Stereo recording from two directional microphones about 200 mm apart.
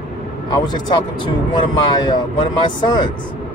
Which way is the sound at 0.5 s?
20° left (ahead or behind).